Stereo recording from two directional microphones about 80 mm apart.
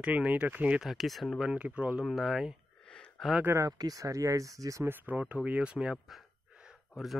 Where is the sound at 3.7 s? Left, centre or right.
Right.